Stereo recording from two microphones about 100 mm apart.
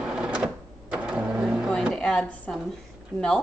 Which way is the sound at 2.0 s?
10° left (ahead or behind).